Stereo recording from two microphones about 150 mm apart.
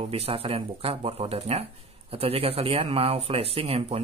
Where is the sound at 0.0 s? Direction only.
40° right (ahead or behind).